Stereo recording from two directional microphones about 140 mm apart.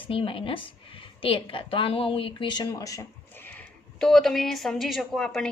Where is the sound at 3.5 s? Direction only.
5° left (ahead or behind).